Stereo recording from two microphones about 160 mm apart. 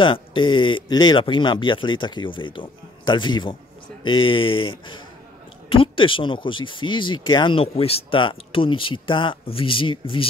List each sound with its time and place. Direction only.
0.0 s speech: 30° left (ahead or behind)